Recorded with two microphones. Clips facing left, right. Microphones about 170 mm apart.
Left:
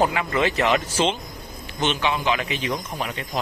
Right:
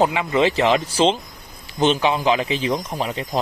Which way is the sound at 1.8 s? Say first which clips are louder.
Right 5 dB; 35° right (ahead or behind).